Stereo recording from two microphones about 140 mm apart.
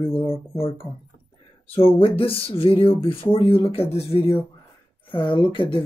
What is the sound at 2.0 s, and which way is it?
Speech, 40° left (ahead or behind).